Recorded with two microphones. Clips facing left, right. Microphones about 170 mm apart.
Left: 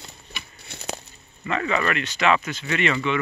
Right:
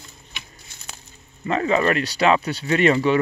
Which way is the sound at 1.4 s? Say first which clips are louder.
Right 5 dB; 35° right (ahead or behind).